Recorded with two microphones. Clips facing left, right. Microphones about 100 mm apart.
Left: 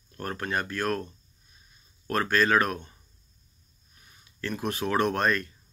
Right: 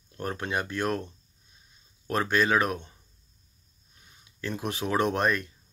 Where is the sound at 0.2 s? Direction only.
15° right (ahead or behind).